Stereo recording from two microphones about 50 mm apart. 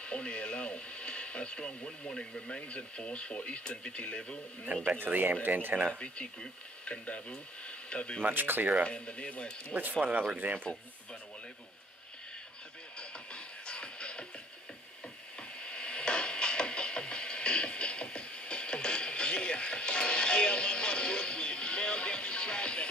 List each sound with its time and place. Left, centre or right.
0.0 s radio: left
2.0 s speech: centre
4.7 s speech: right
5.9 s speech: centre
8.2 s speech: right
8.8 s speech: left
10.3 s speech: right
13.3 s music: centre
15.6 s music: left